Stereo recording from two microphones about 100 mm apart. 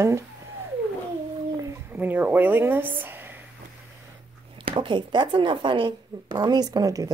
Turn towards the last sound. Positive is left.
turn(degrees=-35)  # may be behind; listen again after turning